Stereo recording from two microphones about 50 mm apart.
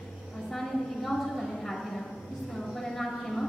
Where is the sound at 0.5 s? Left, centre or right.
Centre.